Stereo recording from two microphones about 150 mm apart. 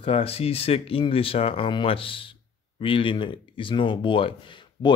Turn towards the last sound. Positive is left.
turn(degrees=30)  # may be behind; listen again after turning